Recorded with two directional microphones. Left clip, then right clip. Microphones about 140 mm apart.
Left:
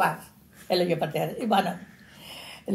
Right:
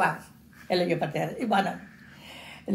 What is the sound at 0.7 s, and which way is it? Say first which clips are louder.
Speech: left 1 dB; 5° left (ahead or behind).